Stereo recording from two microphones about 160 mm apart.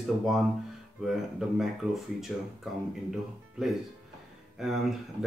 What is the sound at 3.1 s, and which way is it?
Speech, centre (ahead or behind).